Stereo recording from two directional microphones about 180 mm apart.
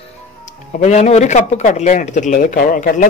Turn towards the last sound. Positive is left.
turn(degrees=50)  # may be behind; listen again after turning